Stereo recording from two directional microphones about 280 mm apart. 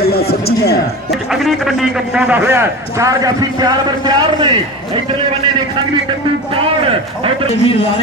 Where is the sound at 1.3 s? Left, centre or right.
Centre.